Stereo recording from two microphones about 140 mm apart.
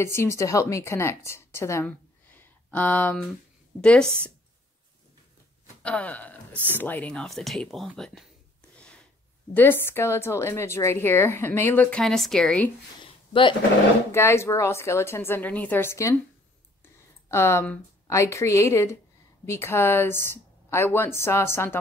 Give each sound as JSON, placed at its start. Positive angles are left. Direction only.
{"t": 0.0, "sound": "a woman's voice", "side_deg": 20}
{"t": 5.8, "sound": "speech", "side_deg": 10}
{"t": 8.7, "sound": "a sound", "side_deg": 5}
{"t": 9.5, "sound": "a woman's voice", "side_deg": 15}
{"t": 13.0, "sound": "a sound", "side_deg": 35}
{"t": 14.1, "sound": "a woman's voice", "side_deg": 20}
{"t": 17.3, "sound": "a woman's voice", "side_deg": 20}